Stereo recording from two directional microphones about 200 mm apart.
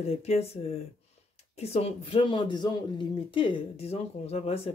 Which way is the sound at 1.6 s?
30° left (ahead or behind).